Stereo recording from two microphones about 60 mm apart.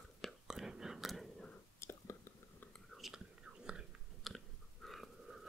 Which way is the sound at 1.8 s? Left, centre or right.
Left.